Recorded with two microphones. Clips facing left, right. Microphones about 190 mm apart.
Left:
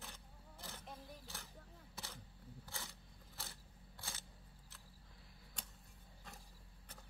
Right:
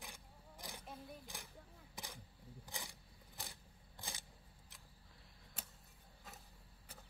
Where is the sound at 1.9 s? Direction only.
15° right (ahead or behind).